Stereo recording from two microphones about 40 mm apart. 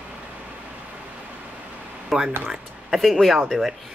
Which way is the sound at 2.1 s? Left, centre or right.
Centre.